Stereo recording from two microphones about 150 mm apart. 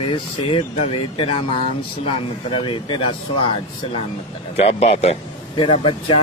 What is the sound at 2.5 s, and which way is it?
Speech, 35° left (ahead or behind).